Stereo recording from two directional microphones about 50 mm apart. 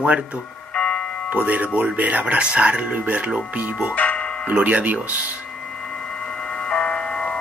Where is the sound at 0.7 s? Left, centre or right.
Left.